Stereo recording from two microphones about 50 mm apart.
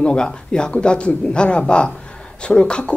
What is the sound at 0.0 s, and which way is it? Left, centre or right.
Speech, centre.